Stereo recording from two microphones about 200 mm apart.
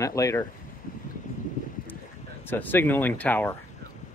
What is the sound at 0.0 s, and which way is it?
Speech, 15° left (ahead or behind).